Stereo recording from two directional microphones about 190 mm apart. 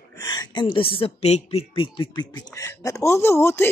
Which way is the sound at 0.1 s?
20° left (ahead or behind).